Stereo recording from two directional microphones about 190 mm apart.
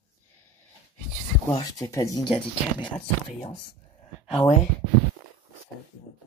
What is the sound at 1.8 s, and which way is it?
Speech, 15° left (ahead or behind).